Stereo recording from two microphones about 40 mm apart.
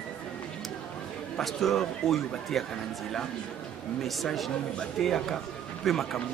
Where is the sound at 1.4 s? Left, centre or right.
Centre.